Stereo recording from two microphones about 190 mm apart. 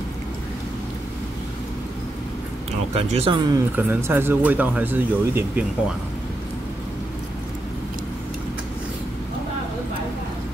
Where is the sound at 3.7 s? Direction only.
10° right (ahead or behind).